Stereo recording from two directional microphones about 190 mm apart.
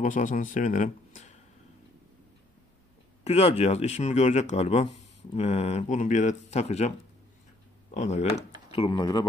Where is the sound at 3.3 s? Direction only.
35° left (ahead or behind).